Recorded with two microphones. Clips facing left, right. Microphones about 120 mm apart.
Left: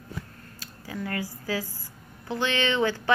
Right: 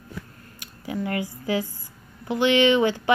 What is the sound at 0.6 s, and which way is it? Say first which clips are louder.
A woman's voice: right 6 dB; 20° right (ahead or behind).